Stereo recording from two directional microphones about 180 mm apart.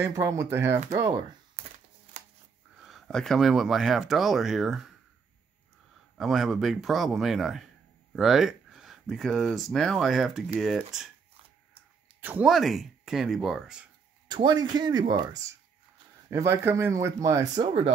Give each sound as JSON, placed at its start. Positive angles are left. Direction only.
{"t": 0.0, "sound": "speech", "side_deg": -20}
{"t": 2.8, "sound": "speech", "side_deg": 0}
{"t": 6.1, "sound": "speech", "side_deg": 0}
{"t": 14.2, "sound": "speech", "side_deg": -25}